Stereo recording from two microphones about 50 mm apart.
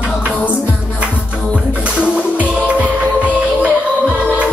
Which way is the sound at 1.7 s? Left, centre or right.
Right.